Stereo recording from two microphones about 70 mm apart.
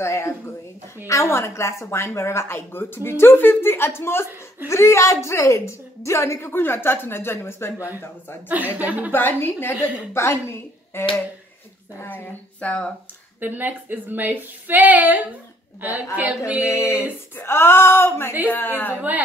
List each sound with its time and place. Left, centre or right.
0.0 s a woman's voice: left
8.5 s speech: right
9.1 s speech: left
13.4 s speech: right
16.2 s female singing: centre
16.6 s a sound: left
17.4 s a woman's voice: left